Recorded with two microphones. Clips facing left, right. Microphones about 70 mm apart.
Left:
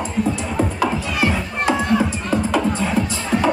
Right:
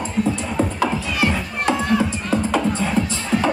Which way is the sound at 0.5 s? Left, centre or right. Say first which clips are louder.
Left 1 dB; centre.